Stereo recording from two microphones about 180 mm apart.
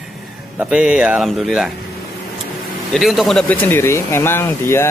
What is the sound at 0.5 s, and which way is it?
Speech, 5° right (ahead or behind).